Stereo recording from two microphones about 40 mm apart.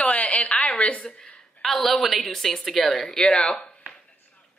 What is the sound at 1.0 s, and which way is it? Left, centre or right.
A woman's voice, centre.